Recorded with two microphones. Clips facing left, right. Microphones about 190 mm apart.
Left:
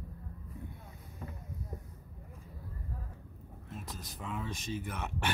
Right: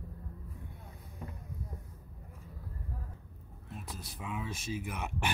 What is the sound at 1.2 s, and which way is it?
Vehicle, 15° right (ahead or behind).